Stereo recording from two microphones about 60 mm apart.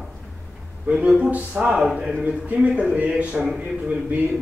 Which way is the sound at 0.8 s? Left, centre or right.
Right.